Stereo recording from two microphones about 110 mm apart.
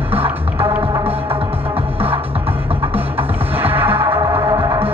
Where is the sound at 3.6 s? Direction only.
15° right (ahead or behind).